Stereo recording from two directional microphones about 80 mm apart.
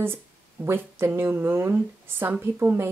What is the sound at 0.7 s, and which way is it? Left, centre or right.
Speech, right.